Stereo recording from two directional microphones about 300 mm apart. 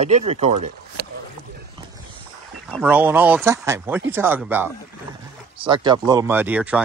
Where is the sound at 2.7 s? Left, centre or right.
Centre.